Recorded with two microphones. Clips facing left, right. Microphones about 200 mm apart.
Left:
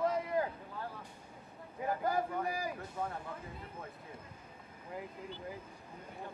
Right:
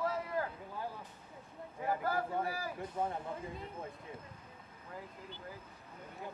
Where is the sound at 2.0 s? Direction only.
15° left (ahead or behind).